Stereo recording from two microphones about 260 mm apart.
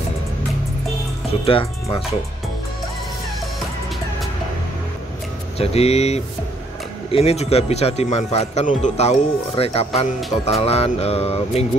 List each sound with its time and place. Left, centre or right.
1.4 s speech: left
5.6 s speech: left